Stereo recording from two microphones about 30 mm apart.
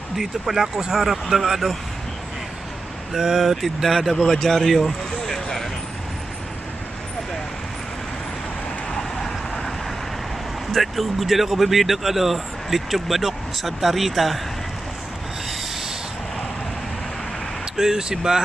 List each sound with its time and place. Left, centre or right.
0.2 s speech: centre
1.0 s speech: centre
3.1 s speech: centre
4.2 s speech: centre
9.2 s vehicle: centre
10.7 s speech: centre
17.7 s speech: centre